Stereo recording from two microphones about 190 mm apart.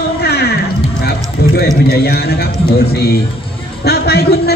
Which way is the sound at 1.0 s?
55° left (ahead or behind).